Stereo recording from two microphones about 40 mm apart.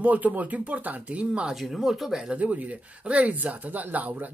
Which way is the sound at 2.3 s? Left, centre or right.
Right.